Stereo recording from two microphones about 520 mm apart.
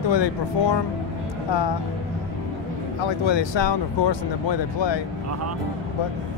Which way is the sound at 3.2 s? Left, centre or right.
Left.